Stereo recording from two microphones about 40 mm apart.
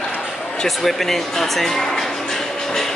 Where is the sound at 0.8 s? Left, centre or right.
Centre.